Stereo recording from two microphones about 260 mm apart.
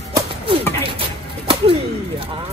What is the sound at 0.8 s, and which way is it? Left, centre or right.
Bird, centre.